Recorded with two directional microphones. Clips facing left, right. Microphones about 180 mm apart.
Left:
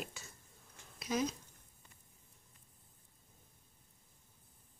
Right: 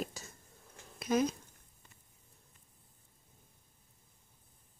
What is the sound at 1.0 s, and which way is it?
Speech, 55° right (ahead or behind).